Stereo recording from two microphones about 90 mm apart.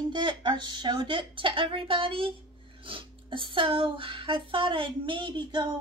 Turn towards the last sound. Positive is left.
turn(degrees=-60)  # may be behind; listen again after turning